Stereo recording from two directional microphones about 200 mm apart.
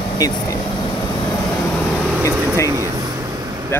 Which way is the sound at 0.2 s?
20° left (ahead or behind).